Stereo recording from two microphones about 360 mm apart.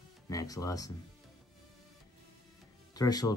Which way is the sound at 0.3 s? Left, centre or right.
Centre.